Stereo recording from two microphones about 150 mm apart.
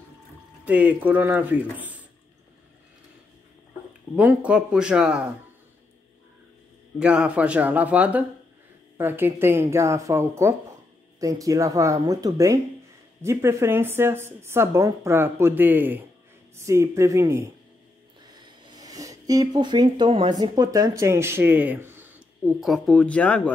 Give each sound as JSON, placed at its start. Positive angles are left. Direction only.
{"t": 0.7, "sound": "speech", "side_deg": -10}
{"t": 4.1, "sound": "speech", "side_deg": -10}
{"t": 7.0, "sound": "speech", "side_deg": -5}
{"t": 18.6, "sound": "speech", "side_deg": -25}
{"t": 22.6, "sound": "speech", "side_deg": 0}